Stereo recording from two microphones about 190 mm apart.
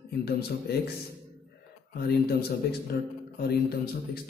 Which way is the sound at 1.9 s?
55° left (ahead or behind).